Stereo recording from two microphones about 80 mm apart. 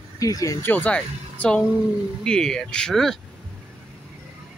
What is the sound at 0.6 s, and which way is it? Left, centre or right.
Speech, left.